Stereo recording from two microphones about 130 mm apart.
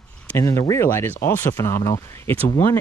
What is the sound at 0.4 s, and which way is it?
Speech, 25° left (ahead or behind).